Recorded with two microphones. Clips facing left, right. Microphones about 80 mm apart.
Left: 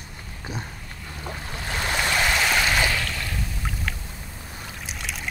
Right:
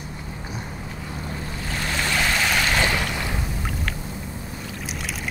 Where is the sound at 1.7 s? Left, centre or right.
Centre.